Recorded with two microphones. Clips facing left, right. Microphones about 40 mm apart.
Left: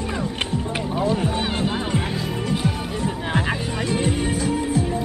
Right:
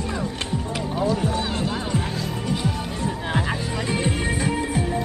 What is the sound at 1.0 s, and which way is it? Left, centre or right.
Music, left.